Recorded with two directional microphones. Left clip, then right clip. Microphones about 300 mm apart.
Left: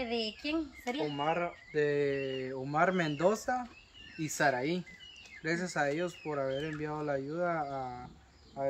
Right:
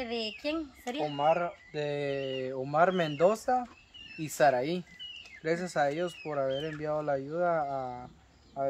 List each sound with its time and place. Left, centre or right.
0.0 s speech: centre